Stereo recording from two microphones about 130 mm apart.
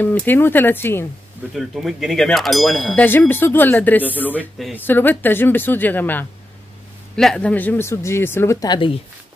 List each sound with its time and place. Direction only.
0.0 s speech: 15° left (ahead or behind)
1.5 s speech: centre (ahead or behind)
3.0 s speech: 15° left (ahead or behind)
8.5 s speech: 35° left (ahead or behind)